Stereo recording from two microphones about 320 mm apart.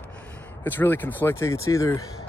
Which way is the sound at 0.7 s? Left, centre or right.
Centre.